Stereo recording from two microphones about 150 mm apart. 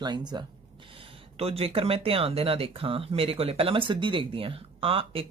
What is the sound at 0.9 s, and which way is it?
Speech, 40° right (ahead or behind).